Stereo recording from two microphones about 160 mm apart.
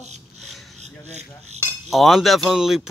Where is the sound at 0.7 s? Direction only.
45° right (ahead or behind).